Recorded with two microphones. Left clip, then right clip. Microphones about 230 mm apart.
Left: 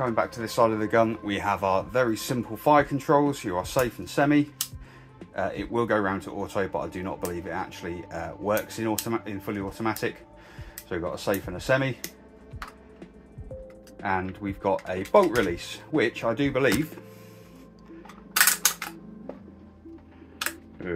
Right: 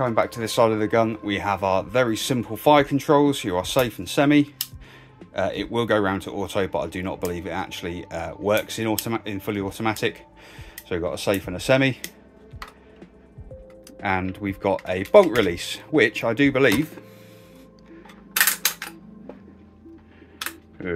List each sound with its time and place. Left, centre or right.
0.0 s speech: right
14.0 s speech: right